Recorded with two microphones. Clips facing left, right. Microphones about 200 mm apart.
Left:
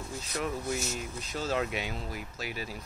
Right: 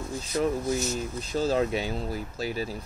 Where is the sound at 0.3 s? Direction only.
35° right (ahead or behind).